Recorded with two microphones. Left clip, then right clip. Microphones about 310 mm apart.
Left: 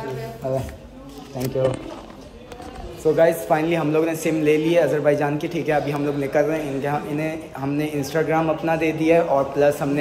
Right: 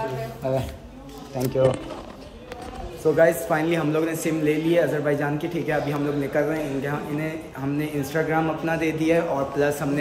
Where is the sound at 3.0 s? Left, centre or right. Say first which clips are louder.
Left 2 dB; centre.